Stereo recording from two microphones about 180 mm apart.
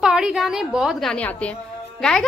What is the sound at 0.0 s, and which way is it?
A woman's voice, 5° right (ahead or behind).